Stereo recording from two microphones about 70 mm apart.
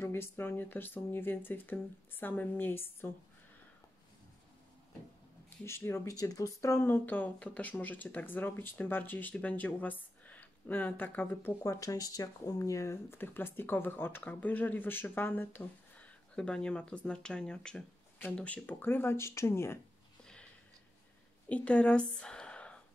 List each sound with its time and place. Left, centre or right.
0.0 s speech: left
5.7 s speech: left
6.0 s speech: left
6.8 s speech: left
11.6 s speech: left
16.3 s speech: centre; by 19.8 s left
21.5 s a woman's voice: centre